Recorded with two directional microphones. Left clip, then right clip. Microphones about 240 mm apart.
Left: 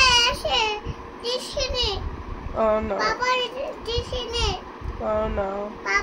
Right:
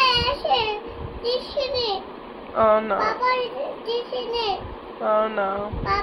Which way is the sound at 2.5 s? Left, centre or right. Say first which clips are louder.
Right 4 dB; centre.